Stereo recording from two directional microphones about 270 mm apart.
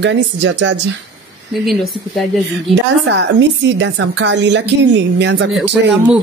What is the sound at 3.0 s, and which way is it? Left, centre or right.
A woman's voice, right.